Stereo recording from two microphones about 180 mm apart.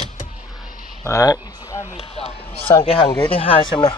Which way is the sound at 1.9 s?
35° left (ahead or behind).